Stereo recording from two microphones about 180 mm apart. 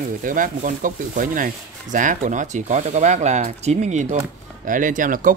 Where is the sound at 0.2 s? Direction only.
50° right (ahead or behind).